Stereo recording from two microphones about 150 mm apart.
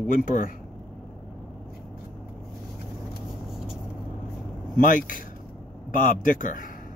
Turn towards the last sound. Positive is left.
turn(degrees=65)  # may be behind; listen again after turning